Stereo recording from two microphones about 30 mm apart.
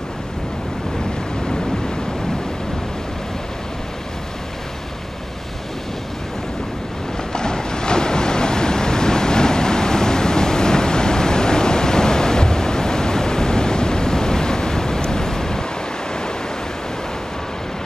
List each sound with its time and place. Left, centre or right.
7.3 s waves: left